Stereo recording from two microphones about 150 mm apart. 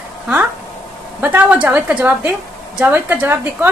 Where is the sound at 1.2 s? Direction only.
10° right (ahead or behind).